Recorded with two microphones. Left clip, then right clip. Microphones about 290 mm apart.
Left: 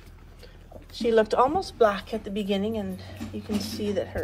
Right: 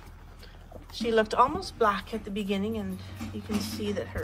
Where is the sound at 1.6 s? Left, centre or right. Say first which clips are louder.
Left 4 dB; centre.